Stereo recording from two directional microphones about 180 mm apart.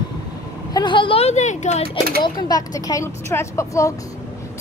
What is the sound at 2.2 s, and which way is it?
A woman's voice, 20° left (ahead or behind).